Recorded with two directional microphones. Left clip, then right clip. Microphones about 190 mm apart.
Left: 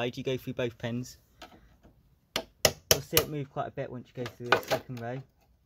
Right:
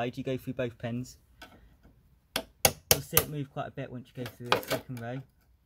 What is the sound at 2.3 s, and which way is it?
Chop, centre (ahead or behind).